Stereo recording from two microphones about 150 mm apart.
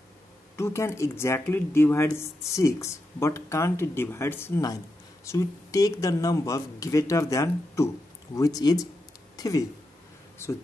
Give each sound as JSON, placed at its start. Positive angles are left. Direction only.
{"t": 0.6, "sound": "speech", "side_deg": 20}